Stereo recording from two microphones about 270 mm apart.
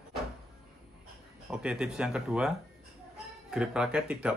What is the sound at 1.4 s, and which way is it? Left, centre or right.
Speech, centre.